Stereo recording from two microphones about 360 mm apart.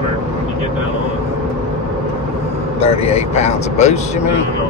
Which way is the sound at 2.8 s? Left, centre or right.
Centre.